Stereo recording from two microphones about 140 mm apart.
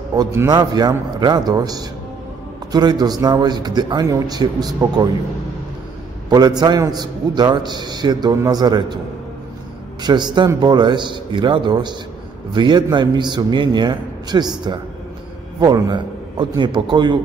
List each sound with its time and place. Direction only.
0.5 s a man's voice: 30° right (ahead or behind)
6.3 s a man's voice: 30° right (ahead or behind)
10.0 s a man's voice: 30° right (ahead or behind)